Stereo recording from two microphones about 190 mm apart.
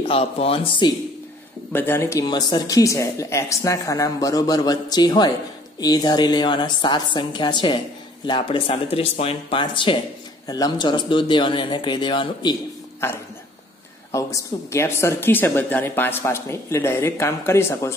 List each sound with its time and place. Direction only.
0.0 s speech: 30° left (ahead or behind)
1.7 s a woman's voice: 10° left (ahead or behind)
14.1 s a woman's voice: 15° left (ahead or behind)